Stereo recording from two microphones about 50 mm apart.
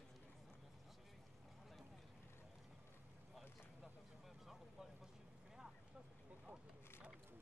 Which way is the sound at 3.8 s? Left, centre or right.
Centre.